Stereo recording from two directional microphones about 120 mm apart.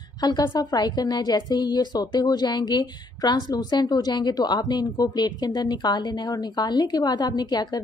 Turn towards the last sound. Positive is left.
turn(degrees=35)  # may be behind; listen again after turning